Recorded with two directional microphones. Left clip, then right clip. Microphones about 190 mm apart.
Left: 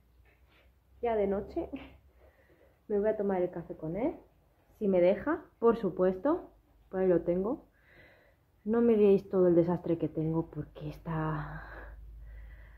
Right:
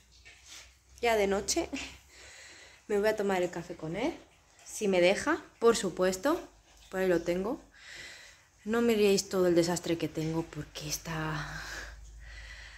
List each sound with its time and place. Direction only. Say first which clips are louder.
1.0 s a woman's voice: right 3 dB; 20° right (ahead or behind)
2.9 s a woman's voice: right 1 dB; 20° right (ahead or behind)
5.7 s a woman's voice: right 1 dB; 5° left (ahead or behind)